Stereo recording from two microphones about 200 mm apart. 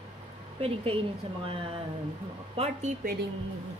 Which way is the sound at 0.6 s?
30° right (ahead or behind).